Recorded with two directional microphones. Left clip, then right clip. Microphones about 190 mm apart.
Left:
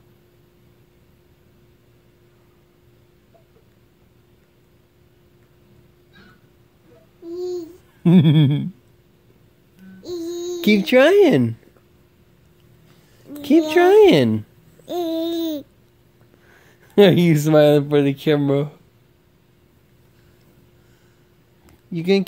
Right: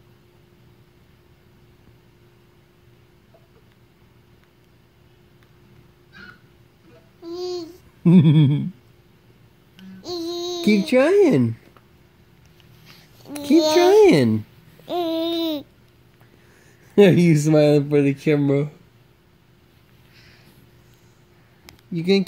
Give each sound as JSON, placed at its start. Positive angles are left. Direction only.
{"t": 7.3, "sound": "babbling", "side_deg": 15}
{"t": 9.8, "sound": "music", "side_deg": 15}
{"t": 10.6, "sound": "a woman's voice", "side_deg": 5}
{"t": 13.4, "sound": "a woman's voice", "side_deg": 0}
{"t": 14.9, "sound": "babbling", "side_deg": 25}
{"t": 16.5, "sound": "a woman's voice", "side_deg": 0}
{"t": 21.9, "sound": "a woman's voice", "side_deg": 0}